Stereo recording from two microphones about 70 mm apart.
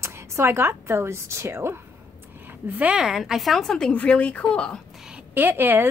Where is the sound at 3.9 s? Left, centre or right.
Centre.